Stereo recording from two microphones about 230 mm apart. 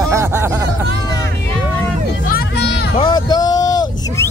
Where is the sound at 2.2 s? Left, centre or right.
Left.